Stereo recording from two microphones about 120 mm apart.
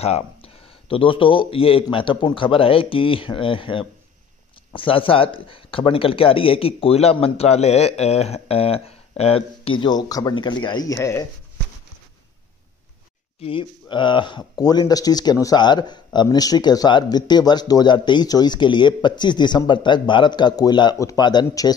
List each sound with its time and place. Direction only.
0.0 s speech: 55° left (ahead or behind); by 11.0 s 35° left (ahead or behind)
13.4 s speech: 45° left (ahead or behind)